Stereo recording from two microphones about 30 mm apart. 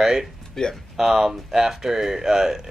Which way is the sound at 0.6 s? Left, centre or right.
Centre.